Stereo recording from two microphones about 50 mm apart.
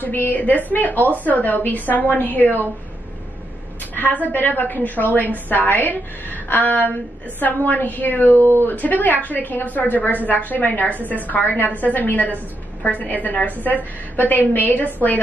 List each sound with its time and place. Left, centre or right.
0.0 s a woman's voice: left
3.9 s a woman's voice: left
8.4 s speech: right
8.6 s a woman's voice: left